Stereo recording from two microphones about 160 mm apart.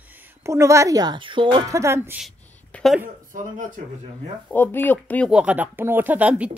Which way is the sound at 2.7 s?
5° left (ahead or behind).